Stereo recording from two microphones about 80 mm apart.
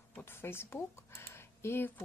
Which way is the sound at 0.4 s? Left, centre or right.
Left.